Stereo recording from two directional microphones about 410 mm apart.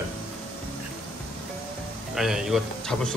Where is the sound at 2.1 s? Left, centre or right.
Centre.